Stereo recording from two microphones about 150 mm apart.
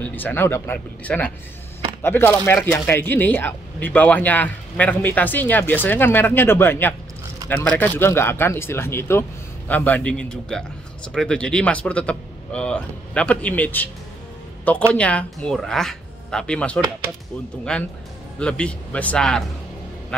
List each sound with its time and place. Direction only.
0.0 s speech: 10° left (ahead or behind)
15.0 s speech: 10° left (ahead or behind)